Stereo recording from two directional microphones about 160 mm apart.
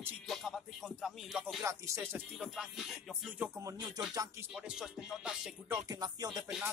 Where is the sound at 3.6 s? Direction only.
20° right (ahead or behind).